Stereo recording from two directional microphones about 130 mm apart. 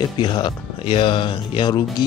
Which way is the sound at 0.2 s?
35° left (ahead or behind).